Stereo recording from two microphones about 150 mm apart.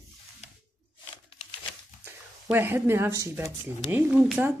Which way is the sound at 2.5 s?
15° right (ahead or behind).